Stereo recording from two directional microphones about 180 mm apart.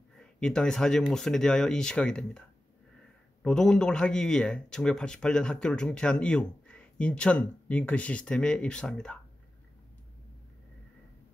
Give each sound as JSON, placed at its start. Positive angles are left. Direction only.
{"t": 0.2, "sound": "speech", "side_deg": 5}
{"t": 3.4, "sound": "speech", "side_deg": 5}